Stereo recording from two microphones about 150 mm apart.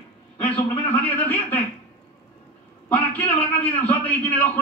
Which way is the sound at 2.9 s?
10° left (ahead or behind).